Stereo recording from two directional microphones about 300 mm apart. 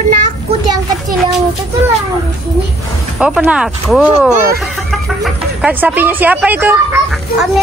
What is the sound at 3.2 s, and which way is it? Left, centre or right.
Speech, centre.